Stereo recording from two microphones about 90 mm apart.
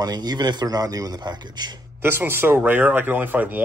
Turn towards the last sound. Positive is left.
turn(degrees=-20)  # may be behind; listen again after turning